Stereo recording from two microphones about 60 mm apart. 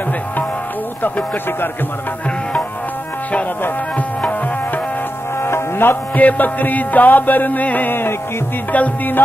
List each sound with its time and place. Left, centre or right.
1.0 s speech: left
5.4 s music: left